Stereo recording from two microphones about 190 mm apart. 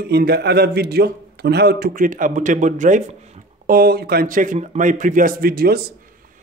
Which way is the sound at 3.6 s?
50° right (ahead or behind).